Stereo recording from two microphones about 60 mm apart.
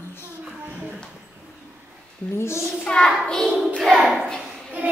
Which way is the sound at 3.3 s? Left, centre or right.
Centre.